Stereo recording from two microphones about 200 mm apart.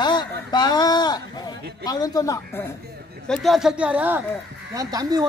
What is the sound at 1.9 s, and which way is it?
Speech, 20° left (ahead or behind).